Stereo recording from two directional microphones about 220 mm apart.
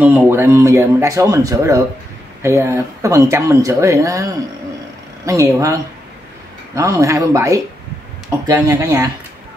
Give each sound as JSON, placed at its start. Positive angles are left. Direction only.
{"t": 0.0, "sound": "speech", "side_deg": -10}